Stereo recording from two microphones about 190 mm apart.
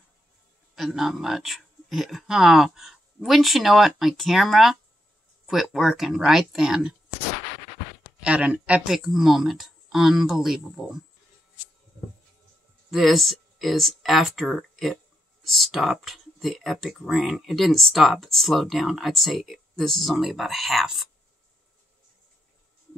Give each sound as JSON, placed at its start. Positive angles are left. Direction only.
{"t": 0.7, "sound": "speech", "side_deg": 0}
{"t": 8.2, "sound": "speech", "side_deg": -5}
{"t": 12.9, "sound": "speech", "side_deg": 0}